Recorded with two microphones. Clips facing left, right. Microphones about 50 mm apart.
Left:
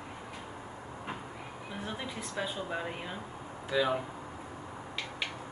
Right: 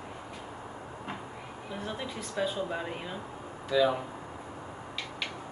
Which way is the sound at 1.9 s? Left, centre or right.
Centre.